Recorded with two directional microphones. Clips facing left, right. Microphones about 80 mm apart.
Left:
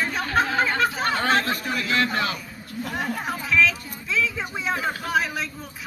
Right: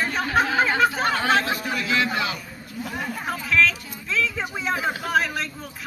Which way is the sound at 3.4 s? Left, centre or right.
Centre.